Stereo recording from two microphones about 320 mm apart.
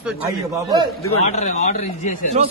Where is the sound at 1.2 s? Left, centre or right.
Left.